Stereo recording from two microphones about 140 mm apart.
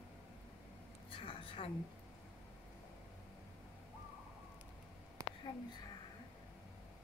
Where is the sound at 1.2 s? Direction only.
40° left (ahead or behind).